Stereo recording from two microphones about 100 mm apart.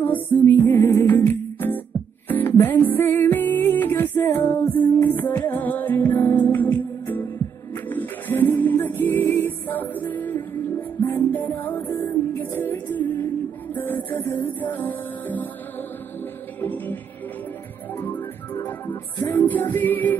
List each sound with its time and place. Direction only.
0.0 s music: 15° left (ahead or behind)
16.6 s music: 20° left (ahead or behind)
18.0 s music: 20° left (ahead or behind)